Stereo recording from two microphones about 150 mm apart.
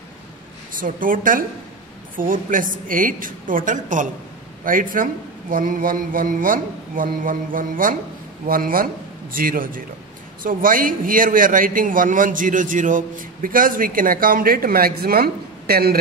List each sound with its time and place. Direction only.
0.7 s a man's voice: 65° right (ahead or behind); by 16.0 s 90° right